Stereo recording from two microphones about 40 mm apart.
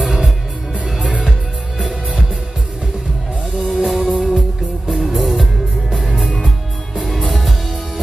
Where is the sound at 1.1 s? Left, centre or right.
Right.